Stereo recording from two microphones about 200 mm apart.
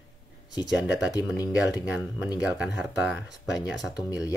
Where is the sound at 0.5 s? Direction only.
20° left (ahead or behind).